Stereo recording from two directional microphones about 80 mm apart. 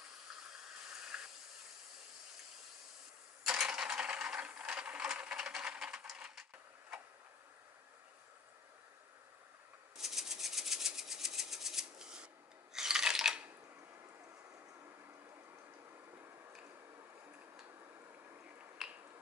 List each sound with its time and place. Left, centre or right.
0.9 s hiss: centre
3.4 s mechanisms: centre
9.9 s a sound: centre
12.7 s dishes: centre
16.1 s a sound: right
18.8 s finger snapping: centre